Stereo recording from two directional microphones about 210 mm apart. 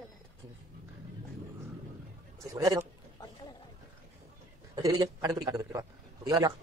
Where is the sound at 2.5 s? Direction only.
15° right (ahead or behind).